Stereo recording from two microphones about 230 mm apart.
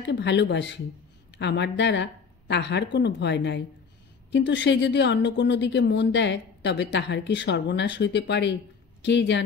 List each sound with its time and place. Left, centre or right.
0.0 s a woman's voice: left